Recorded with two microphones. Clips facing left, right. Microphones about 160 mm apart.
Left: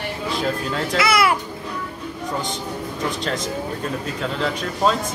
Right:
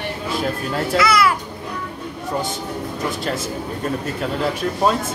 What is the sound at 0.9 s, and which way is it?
Speech, 25° left (ahead or behind).